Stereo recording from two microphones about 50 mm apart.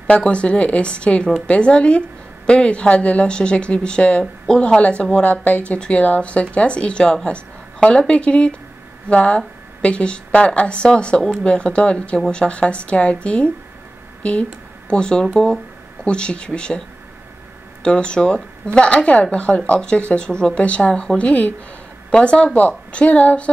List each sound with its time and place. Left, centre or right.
0.0 s speech: left
5.1 s a woman's voice: left
7.2 s a sound: left
8.1 s speech: left
14.9 s speech: centre
17.8 s speech: centre